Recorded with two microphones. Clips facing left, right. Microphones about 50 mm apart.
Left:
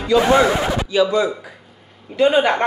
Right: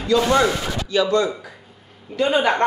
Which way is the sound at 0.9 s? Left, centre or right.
Centre.